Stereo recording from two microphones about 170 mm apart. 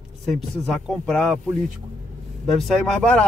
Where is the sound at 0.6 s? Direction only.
5° left (ahead or behind).